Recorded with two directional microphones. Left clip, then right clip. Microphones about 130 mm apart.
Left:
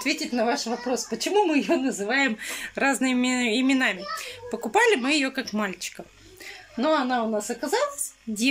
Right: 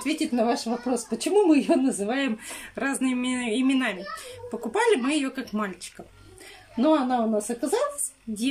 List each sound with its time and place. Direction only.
0.0 s speech: 20° right (ahead or behind)
2.4 s speech: 5° right (ahead or behind)
6.8 s speech: 20° right (ahead or behind)